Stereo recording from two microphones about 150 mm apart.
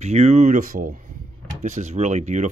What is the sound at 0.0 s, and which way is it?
Speech, 45° right (ahead or behind).